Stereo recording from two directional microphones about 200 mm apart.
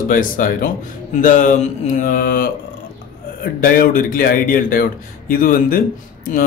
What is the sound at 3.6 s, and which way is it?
Speech, 45° left (ahead or behind).